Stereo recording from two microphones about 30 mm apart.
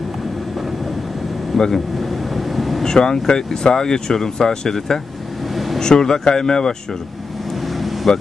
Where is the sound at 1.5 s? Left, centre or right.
Centre.